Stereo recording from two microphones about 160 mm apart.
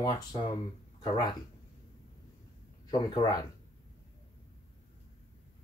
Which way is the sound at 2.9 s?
25° left (ahead or behind).